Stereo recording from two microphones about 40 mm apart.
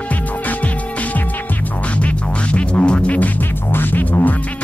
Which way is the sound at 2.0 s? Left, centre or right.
Left.